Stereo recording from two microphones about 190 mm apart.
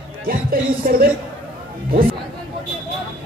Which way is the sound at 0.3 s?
50° right (ahead or behind).